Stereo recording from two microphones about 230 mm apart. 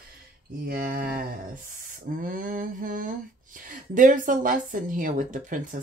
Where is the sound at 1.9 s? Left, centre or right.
Right.